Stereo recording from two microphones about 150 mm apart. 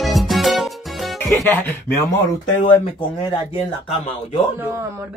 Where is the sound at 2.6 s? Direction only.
35° left (ahead or behind).